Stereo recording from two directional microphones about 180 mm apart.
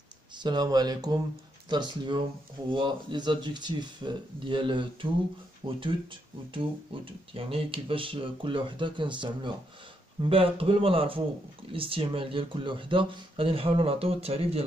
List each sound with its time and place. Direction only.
0.4 s speech: 25° right (ahead or behind)